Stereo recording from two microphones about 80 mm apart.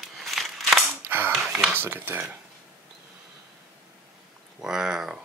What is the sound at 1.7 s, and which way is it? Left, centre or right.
Speech, right.